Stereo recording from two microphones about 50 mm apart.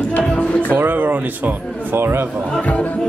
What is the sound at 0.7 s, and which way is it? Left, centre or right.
Speech, right.